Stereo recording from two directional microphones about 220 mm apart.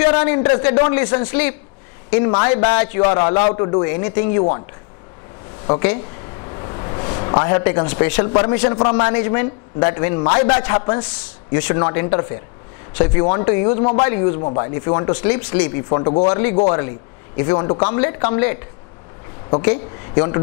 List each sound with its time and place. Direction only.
0.0 s a man's voice: 15° left (ahead or behind)
2.2 s speech: 20° left (ahead or behind)
5.7 s a man's voice: 15° left (ahead or behind)
6.4 s a sound: 20° left (ahead or behind)
7.9 s a man's voice: 10° left (ahead or behind)
11.5 s a man's voice: 10° left (ahead or behind)
13.1 s speech: 20° left (ahead or behind)
19.7 s a woman's voice: 20° left (ahead or behind)